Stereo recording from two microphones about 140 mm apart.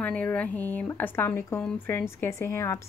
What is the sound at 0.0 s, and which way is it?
A woman's voice, 10° left (ahead or behind).